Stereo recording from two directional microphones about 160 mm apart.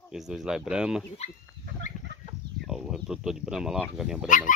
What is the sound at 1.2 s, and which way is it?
Speech, 45° left (ahead or behind).